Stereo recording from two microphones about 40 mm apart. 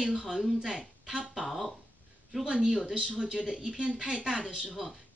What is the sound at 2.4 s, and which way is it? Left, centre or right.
Speech, centre.